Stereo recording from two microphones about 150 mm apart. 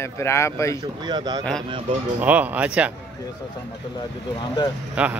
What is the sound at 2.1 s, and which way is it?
Speech, 10° right (ahead or behind).